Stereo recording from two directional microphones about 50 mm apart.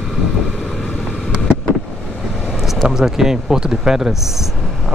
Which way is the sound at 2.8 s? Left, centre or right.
Centre.